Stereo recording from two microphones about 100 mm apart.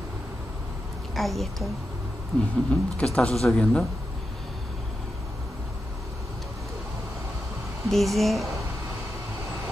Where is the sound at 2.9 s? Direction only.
10° left (ahead or behind).